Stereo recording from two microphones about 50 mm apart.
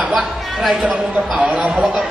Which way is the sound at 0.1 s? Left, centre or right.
Centre.